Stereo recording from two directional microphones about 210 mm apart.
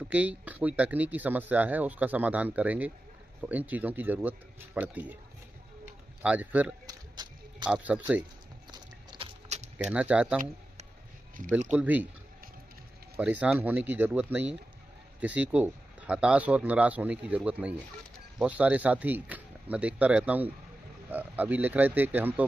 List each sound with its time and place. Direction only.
0.1 s speech: 5° right (ahead or behind)
6.2 s speech: 10° right (ahead or behind)
8.7 s a sound: 30° right (ahead or behind)
9.8 s speech: 5° right (ahead or behind)
11.7 s speech: 5° right (ahead or behind)
13.1 s speech: 5° right (ahead or behind)